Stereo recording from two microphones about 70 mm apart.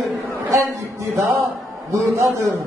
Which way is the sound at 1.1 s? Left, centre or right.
Right.